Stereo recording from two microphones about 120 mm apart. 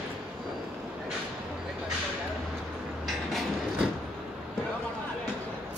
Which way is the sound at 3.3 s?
Centre (ahead or behind).